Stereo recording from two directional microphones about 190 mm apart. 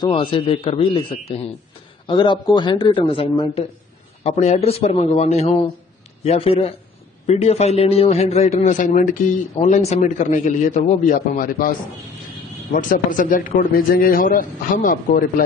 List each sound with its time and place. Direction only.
0.0 s a man's voice: 25° left (ahead or behind); by 11.7 s 50° left (ahead or behind)
12.7 s a man's voice: 45° left (ahead or behind)